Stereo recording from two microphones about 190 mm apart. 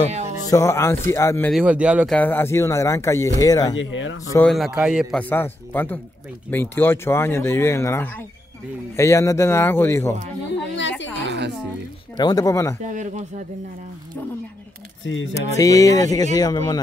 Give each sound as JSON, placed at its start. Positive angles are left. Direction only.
{"t": 0.5, "sound": "speech", "side_deg": 15}
{"t": 1.5, "sound": "a man's voice", "side_deg": -5}
{"t": 2.1, "sound": "speech", "side_deg": 10}
{"t": 3.7, "sound": "speech", "side_deg": 80}
{"t": 4.5, "sound": "a man's voice", "side_deg": 0}
{"t": 5.3, "sound": "speech", "side_deg": 10}
{"t": 10.7, "sound": "a sound", "side_deg": 75}
{"t": 11.2, "sound": "music", "side_deg": -65}
{"t": 12.2, "sound": "speech", "side_deg": 20}
{"t": 12.8, "sound": "speech", "side_deg": -40}
{"t": 15.3, "sound": "speech", "side_deg": 15}